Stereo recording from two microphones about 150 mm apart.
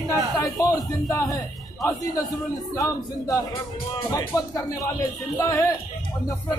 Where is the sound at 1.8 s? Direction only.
20° left (ahead or behind).